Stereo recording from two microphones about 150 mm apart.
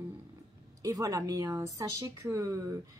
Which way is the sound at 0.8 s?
25° right (ahead or behind).